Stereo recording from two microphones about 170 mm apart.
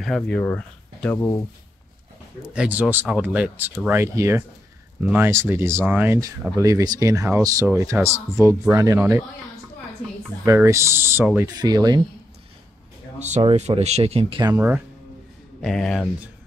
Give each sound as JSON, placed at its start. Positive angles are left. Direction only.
{"t": 0.0, "sound": "speech", "side_deg": 5}
{"t": 2.4, "sound": "speech", "side_deg": -5}
{"t": 10.0, "sound": "speech", "side_deg": 5}
{"t": 10.4, "sound": "speech", "side_deg": -15}
{"t": 13.2, "sound": "speech", "side_deg": -35}
{"t": 15.6, "sound": "speech", "side_deg": 0}